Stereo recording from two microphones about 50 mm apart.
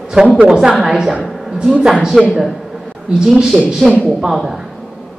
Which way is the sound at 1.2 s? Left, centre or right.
Centre.